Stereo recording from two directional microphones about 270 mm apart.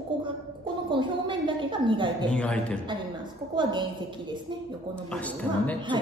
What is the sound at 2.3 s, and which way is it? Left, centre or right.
Speech, centre.